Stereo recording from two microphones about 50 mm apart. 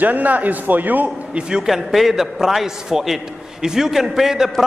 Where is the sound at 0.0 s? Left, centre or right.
Right.